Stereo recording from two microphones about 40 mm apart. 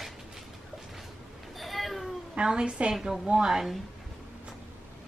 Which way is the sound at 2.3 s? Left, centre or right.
Right.